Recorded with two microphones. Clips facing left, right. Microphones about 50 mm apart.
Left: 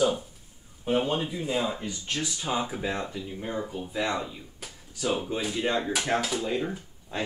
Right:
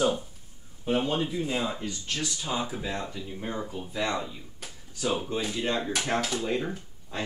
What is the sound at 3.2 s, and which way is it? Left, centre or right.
Speech, centre.